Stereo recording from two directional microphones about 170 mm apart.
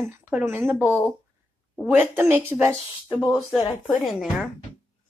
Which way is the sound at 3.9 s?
Centre (ahead or behind).